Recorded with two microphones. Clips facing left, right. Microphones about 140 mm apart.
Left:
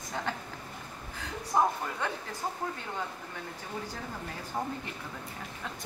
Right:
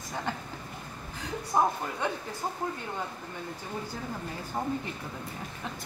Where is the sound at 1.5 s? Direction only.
15° right (ahead or behind).